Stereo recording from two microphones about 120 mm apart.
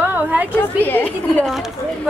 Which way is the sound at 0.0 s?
15° right (ahead or behind).